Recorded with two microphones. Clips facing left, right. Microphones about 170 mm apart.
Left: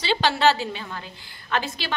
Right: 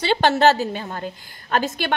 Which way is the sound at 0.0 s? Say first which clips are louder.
Right 4 dB; 50° right (ahead or behind).